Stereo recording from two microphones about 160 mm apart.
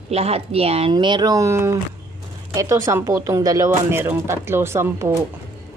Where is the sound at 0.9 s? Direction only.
25° right (ahead or behind).